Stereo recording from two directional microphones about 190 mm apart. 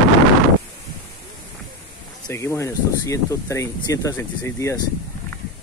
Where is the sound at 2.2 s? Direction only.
15° left (ahead or behind).